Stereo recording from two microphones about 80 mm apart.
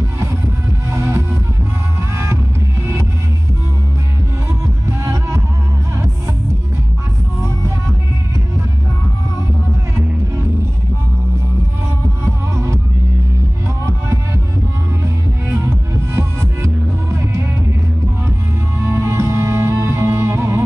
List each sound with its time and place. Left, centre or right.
0.9 s music: right
4.8 s music: right
12.5 s music: right
16.2 s music: right
18.9 s music: right